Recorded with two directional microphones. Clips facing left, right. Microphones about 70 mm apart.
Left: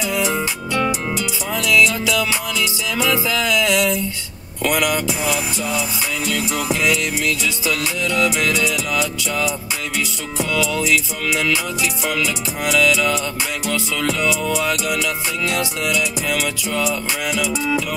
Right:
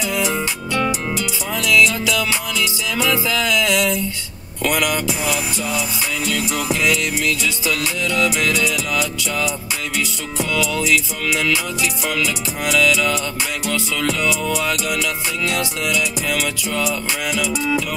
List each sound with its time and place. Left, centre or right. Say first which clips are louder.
0.1 s music: left 1 dB; left
10.5 s music: even; left